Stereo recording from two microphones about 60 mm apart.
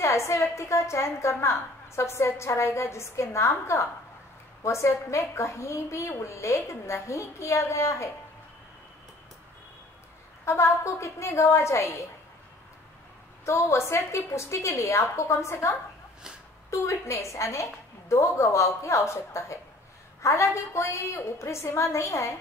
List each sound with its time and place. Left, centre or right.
0.0 s a woman's voice: left
10.4 s a woman's voice: left
13.5 s a woman's voice: left
16.7 s a woman's voice: left